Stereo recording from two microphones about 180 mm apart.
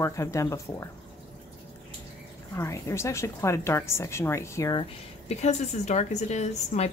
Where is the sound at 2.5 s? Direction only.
15° left (ahead or behind).